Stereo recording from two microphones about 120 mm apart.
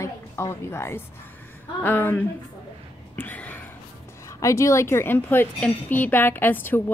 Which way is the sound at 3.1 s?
15° left (ahead or behind).